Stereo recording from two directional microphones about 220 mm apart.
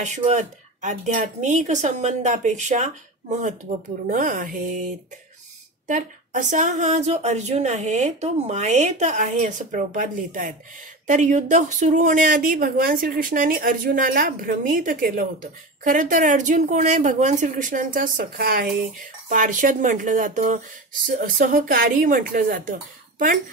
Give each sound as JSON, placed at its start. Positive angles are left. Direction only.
{"t": 0.0, "sound": "speech", "side_deg": -30}